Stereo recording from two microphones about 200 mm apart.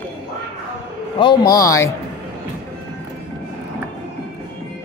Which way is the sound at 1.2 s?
20° left (ahead or behind).